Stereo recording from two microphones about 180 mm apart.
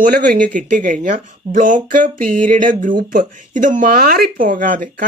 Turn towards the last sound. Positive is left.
turn(degrees=-50)  # may be behind; listen again after turning